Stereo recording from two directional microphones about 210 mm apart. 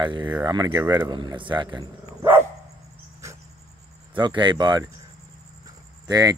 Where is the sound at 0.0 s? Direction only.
20° right (ahead or behind).